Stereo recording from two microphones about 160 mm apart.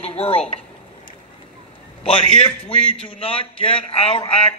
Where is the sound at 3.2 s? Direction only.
35° left (ahead or behind).